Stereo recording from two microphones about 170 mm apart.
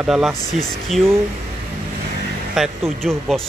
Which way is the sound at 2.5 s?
Centre (ahead or behind).